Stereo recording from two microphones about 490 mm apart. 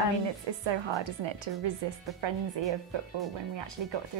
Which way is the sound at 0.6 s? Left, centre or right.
Right.